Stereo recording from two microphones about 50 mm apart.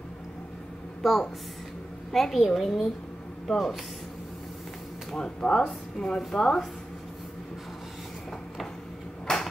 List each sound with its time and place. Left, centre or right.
1.0 s a woman's voice: centre
5.1 s a woman's voice: centre
9.3 s a sound: centre